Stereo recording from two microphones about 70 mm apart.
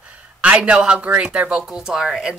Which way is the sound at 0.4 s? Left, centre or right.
Centre.